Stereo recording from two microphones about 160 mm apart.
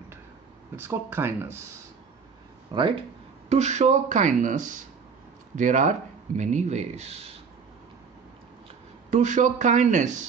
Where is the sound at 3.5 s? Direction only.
45° right (ahead or behind).